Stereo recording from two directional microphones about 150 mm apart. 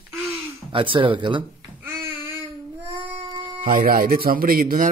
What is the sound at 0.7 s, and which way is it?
Speech, 35° right (ahead or behind).